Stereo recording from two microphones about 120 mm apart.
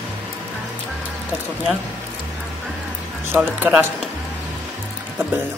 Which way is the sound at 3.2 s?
15° right (ahead or behind).